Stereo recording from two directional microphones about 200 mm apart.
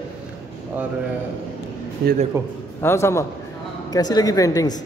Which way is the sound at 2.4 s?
15° right (ahead or behind).